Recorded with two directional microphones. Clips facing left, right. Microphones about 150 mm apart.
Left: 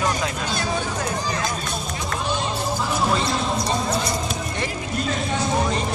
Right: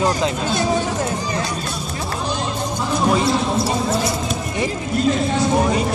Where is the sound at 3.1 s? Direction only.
5° right (ahead or behind).